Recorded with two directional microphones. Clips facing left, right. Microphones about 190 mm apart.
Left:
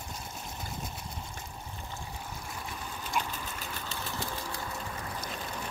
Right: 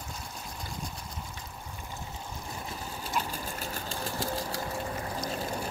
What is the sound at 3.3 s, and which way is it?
Sewing machine, 40° right (ahead or behind).